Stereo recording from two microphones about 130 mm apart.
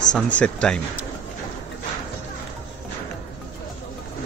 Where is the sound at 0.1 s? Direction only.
10° left (ahead or behind).